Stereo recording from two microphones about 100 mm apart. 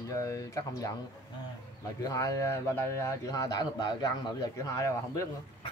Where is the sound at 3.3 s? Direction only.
40° left (ahead or behind).